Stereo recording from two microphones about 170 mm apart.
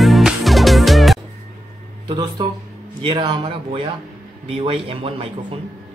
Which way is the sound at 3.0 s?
30° right (ahead or behind).